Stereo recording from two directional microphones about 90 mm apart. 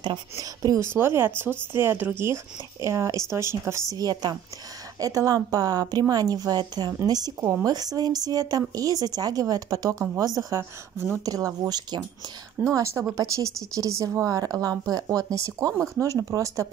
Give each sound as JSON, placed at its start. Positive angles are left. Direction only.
{"t": 0.4, "sound": "speech", "side_deg": -45}
{"t": 0.7, "sound": "speech", "side_deg": -25}
{"t": 3.9, "sound": "speech", "side_deg": -45}
{"t": 12.7, "sound": "speech", "side_deg": -35}